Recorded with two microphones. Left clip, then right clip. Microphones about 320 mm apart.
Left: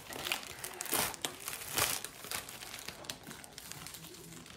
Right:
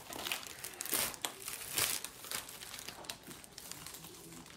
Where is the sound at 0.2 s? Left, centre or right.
Centre.